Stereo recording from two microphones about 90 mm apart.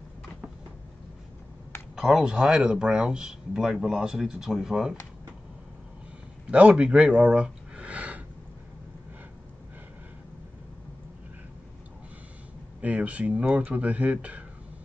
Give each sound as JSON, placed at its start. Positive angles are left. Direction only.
{"t": 2.0, "sound": "speech", "side_deg": -5}
{"t": 6.5, "sound": "speech", "side_deg": -15}
{"t": 12.8, "sound": "speech", "side_deg": -15}